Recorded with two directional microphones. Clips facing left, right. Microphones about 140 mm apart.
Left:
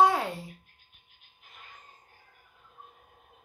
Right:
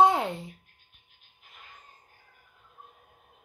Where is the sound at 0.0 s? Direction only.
20° right (ahead or behind).